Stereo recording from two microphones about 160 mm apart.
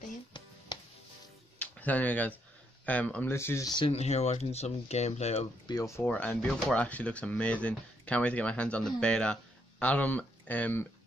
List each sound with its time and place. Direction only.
1.6 s speech: 10° left (ahead or behind)
3.7 s speech: 35° left (ahead or behind)
5.7 s speech: 20° left (ahead or behind)